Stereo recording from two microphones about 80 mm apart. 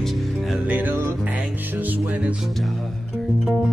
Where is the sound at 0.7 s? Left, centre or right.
Right.